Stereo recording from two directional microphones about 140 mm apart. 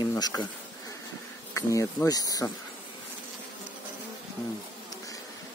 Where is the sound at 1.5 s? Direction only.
20° left (ahead or behind).